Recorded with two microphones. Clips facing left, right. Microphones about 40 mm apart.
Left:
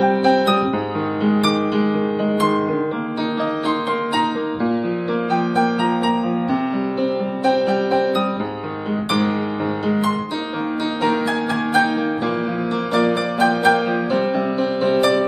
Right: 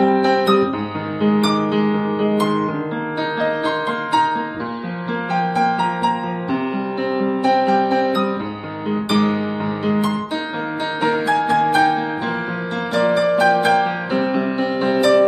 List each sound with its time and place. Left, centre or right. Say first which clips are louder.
0.2 s music: even; right
7.4 s music: right 1 dB; right